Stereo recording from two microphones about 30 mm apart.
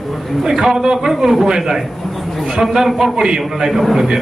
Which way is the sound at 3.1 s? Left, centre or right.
Right.